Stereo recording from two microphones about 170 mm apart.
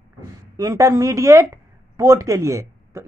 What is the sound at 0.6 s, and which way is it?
A woman's voice, 20° right (ahead or behind).